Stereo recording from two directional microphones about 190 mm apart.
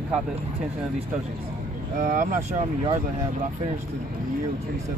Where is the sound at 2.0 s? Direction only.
45° right (ahead or behind).